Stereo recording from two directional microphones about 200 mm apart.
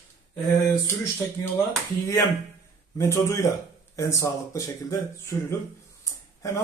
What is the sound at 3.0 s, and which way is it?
Speech, 15° left (ahead or behind).